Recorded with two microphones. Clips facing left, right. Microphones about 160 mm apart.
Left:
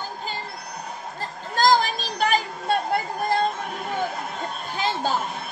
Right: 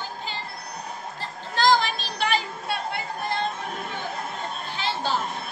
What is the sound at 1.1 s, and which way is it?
Chatter, 45° left (ahead or behind).